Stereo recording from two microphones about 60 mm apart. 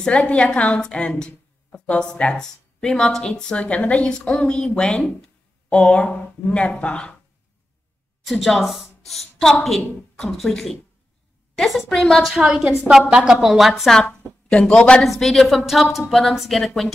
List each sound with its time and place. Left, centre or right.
0.1 s a woman's voice: left
8.3 s speech: centre
12.4 s a woman's voice: centre
14.0 s a woman's voice: centre
15.1 s speech: centre